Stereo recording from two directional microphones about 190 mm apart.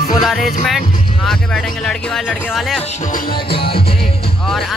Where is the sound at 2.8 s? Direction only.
40° left (ahead or behind).